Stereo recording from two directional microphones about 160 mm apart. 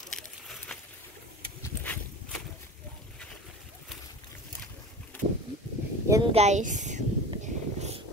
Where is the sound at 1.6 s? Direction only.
10° left (ahead or behind).